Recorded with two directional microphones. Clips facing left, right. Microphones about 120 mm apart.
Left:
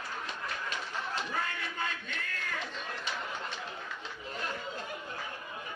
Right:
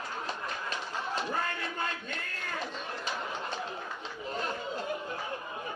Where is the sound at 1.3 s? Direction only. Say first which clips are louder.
Right 3 dB; 40° right (ahead or behind).